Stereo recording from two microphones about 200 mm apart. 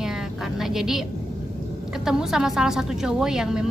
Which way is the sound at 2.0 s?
5° right (ahead or behind).